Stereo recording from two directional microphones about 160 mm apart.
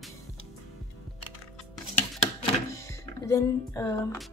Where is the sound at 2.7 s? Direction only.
20° left (ahead or behind).